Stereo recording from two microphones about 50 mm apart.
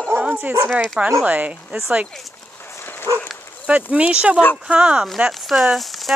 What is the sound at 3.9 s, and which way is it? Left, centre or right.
Speech, right.